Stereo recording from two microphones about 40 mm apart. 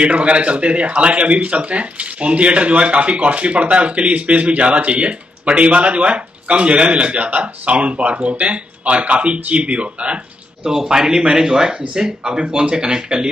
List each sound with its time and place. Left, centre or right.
0.0 s speech: right
10.6 s speech: centre